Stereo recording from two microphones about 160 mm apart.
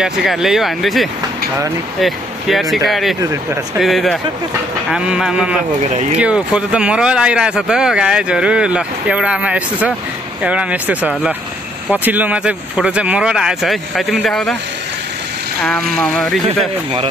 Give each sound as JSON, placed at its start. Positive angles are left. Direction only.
{"t": 0.0, "sound": "speech", "side_deg": 0}
{"t": 15.6, "sound": "speech", "side_deg": 5}
{"t": 16.4, "sound": "speech", "side_deg": -35}